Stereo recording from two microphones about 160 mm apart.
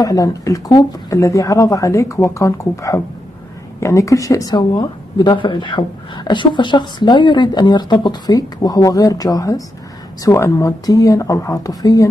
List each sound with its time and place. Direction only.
0.0 s speech: 20° left (ahead or behind)